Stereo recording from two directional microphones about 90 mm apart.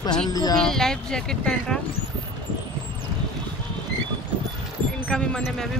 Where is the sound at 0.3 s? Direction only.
45° left (ahead or behind).